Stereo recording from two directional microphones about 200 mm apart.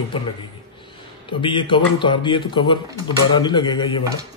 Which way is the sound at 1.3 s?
25° left (ahead or behind).